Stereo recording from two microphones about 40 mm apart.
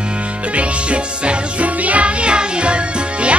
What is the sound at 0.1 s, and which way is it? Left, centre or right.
Music, right.